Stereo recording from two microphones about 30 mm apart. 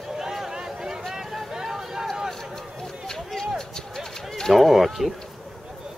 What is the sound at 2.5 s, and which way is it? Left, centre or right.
Run, centre.